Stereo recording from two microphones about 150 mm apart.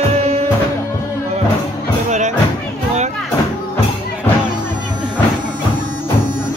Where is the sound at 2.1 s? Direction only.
50° right (ahead or behind).